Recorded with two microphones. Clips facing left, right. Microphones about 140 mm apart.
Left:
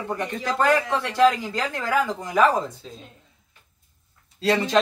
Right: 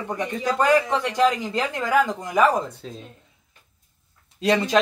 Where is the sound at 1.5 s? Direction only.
20° right (ahead or behind).